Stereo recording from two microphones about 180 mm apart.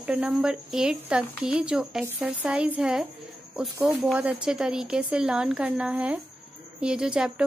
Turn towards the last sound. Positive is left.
turn(degrees=-5)  # may be behind; listen again after turning